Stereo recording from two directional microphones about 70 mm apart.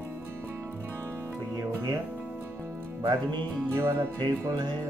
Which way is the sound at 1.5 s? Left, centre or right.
Right.